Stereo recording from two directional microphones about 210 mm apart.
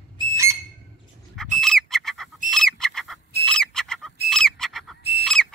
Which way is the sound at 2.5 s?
Centre (ahead or behind).